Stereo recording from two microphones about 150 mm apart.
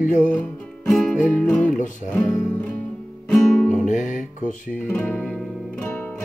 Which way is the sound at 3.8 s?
55° left (ahead or behind).